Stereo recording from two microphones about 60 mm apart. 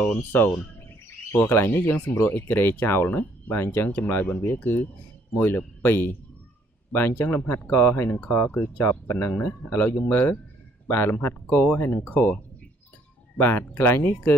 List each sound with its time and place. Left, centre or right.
0.0 s speech: left
13.4 s speech: left